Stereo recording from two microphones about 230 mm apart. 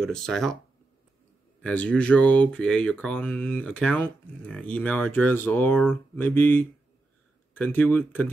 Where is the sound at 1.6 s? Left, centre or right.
Centre.